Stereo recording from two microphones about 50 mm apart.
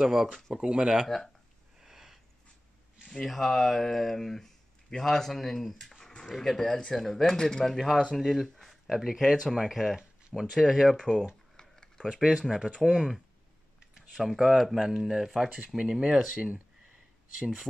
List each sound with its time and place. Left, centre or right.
0.1 s speech: centre
0.6 s speech: centre
1.0 s speech: centre
1.8 s a sound: centre
3.1 s speech: centre
11.5 s a sound: centre
12.1 s speech: centre
14.1 s speech: centre; by 16.6 s right